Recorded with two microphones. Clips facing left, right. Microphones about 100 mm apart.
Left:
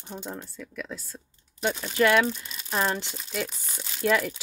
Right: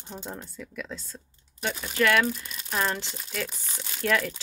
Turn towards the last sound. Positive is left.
turn(degrees=10)  # may be behind; listen again after turning